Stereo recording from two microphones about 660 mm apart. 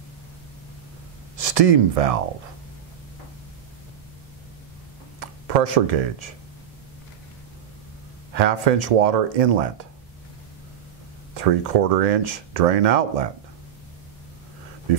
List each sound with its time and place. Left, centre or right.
1.3 s speech: right
5.2 s speech: right
8.3 s speech: right
11.3 s speech: right